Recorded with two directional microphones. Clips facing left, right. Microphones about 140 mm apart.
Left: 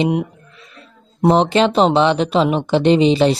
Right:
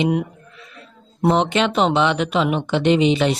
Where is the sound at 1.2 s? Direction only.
35° left (ahead or behind).